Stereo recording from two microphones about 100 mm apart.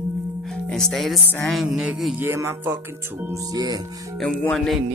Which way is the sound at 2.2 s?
25° right (ahead or behind).